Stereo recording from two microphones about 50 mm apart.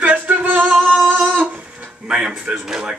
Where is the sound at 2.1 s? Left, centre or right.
Centre.